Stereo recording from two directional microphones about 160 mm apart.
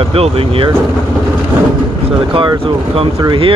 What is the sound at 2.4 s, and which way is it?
Speech, 35° right (ahead or behind).